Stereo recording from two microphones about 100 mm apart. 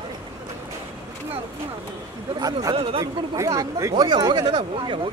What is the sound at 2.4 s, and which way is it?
Speech, 40° right (ahead or behind).